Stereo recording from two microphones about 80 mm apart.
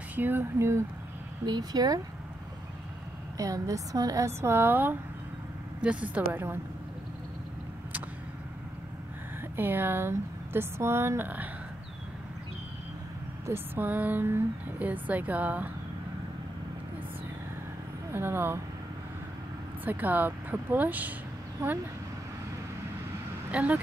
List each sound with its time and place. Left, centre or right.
0.1 s speech: right
1.4 s speech: right
3.3 s speech: right
4.3 s speech: right
9.6 s speech: right
13.5 s speech: right
18.1 s speech: right
19.8 s speech: right
23.5 s speech: centre